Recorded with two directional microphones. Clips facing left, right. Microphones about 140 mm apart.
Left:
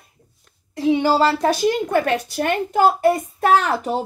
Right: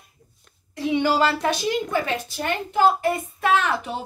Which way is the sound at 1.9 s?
60° left (ahead or behind).